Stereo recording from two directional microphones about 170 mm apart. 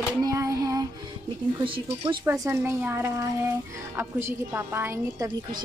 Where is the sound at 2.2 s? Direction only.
15° right (ahead or behind).